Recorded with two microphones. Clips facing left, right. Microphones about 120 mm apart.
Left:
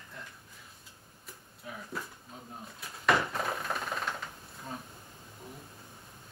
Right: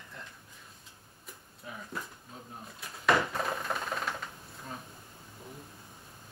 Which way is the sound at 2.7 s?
Centre (ahead or behind).